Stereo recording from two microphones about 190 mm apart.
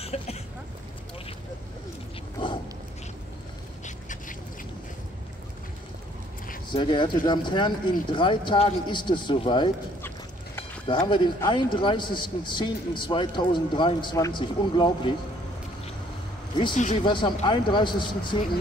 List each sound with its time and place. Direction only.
0.0 s speech: 35° left (ahead or behind)
3.8 s duck: 40° left (ahead or behind)
6.7 s a man's voice: 25° left (ahead or behind)
10.9 s a man's voice: 25° left (ahead or behind)
16.7 s speech: 40° left (ahead or behind)
17.0 s a man's voice: 25° left (ahead or behind)